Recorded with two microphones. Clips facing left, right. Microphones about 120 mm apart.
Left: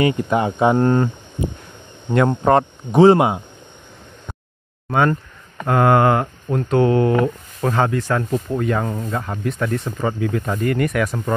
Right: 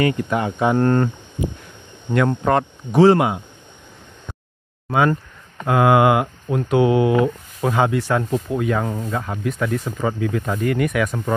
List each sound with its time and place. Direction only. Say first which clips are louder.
0.0 s speech: left 2 dB; 25° left (ahead or behind)
0.8 s speech: left 1 dB; 5° left (ahead or behind)
2.1 s speech: left 3 dB; 30° left (ahead or behind)
4.8 s speech: even; 5° right (ahead or behind)